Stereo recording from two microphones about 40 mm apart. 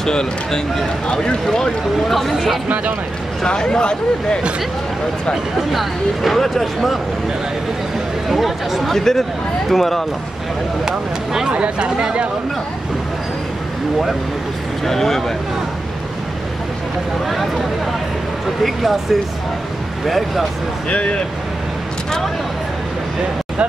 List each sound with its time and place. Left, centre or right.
0.0 s speech: centre
2.0 s speech: centre
3.4 s speech: left
5.3 s speech: centre
8.3 s speech: centre
8.9 s speech: centre
10.9 s speech: centre
11.5 s speech: right
14.9 s speech: centre
17.3 s speech: centre
20.1 s speech: centre
20.9 s speech: left